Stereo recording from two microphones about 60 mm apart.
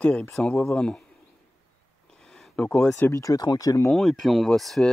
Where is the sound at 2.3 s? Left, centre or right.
Centre.